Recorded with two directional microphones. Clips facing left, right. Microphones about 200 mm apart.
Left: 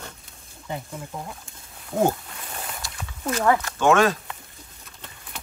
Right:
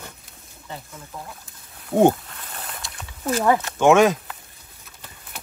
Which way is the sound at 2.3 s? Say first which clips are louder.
Left 1 dB; centre (ahead or behind).